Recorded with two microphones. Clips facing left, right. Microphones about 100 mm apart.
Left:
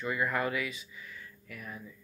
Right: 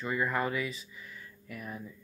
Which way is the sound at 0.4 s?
35° right (ahead or behind).